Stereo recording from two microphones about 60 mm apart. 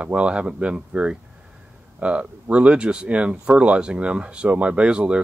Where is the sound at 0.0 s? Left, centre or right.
Centre.